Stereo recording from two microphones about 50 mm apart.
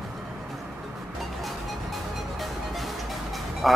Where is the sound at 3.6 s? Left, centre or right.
Centre.